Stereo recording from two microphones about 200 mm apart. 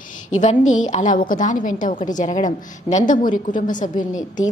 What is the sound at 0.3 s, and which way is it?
A woman's voice, 35° left (ahead or behind).